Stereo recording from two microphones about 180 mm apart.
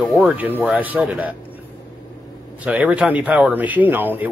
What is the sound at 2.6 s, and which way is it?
Speech, 10° right (ahead or behind).